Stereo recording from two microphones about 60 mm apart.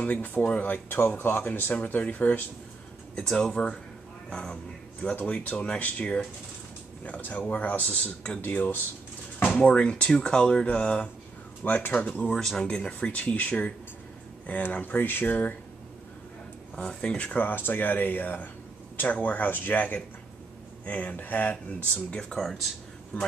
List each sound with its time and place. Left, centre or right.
0.0 s speech: left
3.2 s speech: centre; by 8.8 s left
9.6 s speech: centre
11.6 s speech: left
11.9 s speech: left
12.4 s speech: centre; by 15.5 s left
16.7 s speech: centre
17.4 s speech: left
22.4 s speech: centre